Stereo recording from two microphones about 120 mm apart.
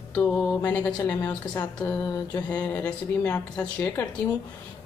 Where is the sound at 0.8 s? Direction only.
15° left (ahead or behind).